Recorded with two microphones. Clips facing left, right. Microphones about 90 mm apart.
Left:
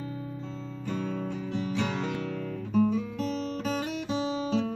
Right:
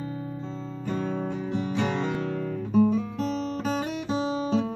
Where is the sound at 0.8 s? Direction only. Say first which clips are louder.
Right 3 dB; 35° right (ahead or behind).